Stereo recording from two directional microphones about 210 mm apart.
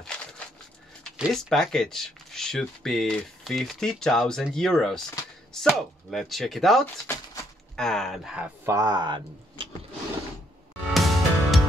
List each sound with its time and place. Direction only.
1.1 s speech: centre (ahead or behind)
7.1 s typewriter: 5° left (ahead or behind)
8.7 s speech: 20° right (ahead or behind)
10.9 s music: centre (ahead or behind)